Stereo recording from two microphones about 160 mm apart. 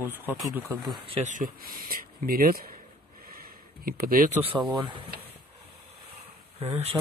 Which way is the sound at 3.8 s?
65° right (ahead or behind).